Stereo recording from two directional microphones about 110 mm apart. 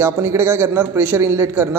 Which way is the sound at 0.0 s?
25° right (ahead or behind).